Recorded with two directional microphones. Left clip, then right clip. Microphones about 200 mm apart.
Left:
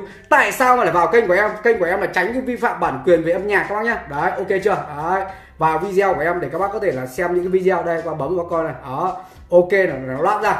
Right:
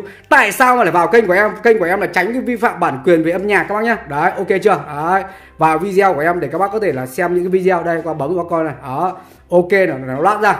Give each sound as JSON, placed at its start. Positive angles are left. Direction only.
{"t": 0.3, "sound": "a woman's voice", "side_deg": -40}